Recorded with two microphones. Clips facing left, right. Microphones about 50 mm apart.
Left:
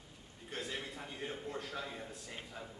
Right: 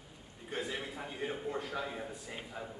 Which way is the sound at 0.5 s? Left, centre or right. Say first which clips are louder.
Right 4 dB; centre.